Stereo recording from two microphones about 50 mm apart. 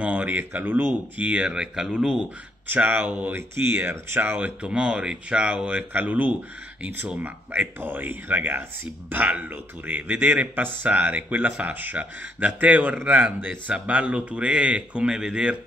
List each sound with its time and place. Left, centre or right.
0.0 s speech: right
1.2 s speech: right
2.7 s speech: right
3.3 s speech: right
4.6 s speech: centre
13.4 s speech: right; by 15.5 s centre